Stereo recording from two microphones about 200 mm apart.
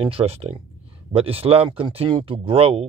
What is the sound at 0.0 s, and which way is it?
Speech, 30° right (ahead or behind).